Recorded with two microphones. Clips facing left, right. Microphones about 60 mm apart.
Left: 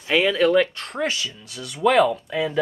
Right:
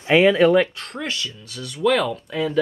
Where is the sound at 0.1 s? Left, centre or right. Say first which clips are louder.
Right 4 dB; right.